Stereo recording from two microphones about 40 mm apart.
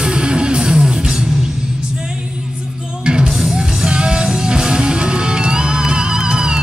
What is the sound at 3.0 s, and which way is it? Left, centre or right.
Music, centre.